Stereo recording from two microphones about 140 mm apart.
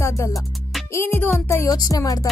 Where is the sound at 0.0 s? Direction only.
20° left (ahead or behind).